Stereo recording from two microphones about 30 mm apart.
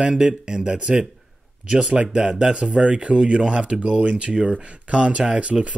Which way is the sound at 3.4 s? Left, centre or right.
Right.